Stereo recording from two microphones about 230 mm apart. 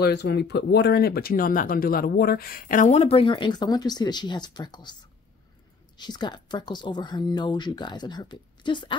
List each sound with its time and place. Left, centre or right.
0.0 s speech: left; by 4.9 s centre
5.9 s speech: centre